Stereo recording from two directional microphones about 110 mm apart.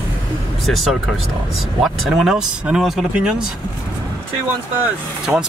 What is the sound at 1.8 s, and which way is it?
Speech, centre (ahead or behind).